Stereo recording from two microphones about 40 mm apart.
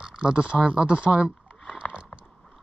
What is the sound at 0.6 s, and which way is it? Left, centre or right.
Speech, right.